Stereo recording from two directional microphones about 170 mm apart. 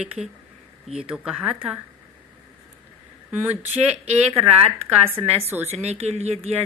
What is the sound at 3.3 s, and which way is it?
Speech, 10° right (ahead or behind).